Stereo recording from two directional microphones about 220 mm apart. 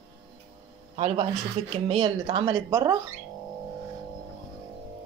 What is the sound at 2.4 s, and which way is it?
Speech, 10° right (ahead or behind).